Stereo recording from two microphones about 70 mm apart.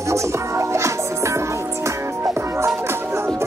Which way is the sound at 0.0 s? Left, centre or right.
Right.